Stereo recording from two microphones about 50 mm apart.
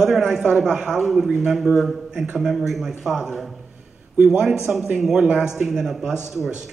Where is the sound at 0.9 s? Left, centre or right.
Centre.